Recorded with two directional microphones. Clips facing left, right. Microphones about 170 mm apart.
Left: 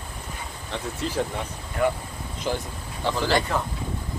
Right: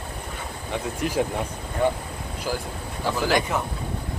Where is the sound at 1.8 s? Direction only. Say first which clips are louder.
Right 1 dB; 30° right (ahead or behind).